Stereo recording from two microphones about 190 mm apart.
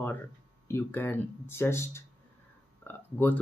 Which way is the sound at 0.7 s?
10° left (ahead or behind).